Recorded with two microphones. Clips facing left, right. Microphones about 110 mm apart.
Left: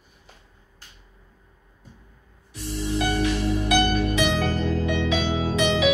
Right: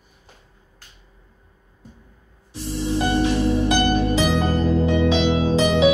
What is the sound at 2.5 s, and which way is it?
Music, 30° right (ahead or behind).